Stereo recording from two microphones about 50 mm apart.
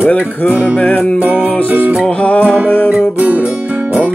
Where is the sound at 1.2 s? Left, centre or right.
Right.